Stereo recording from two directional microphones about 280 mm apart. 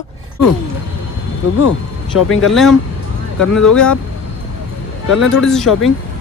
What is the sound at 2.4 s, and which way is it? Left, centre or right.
Speech, centre.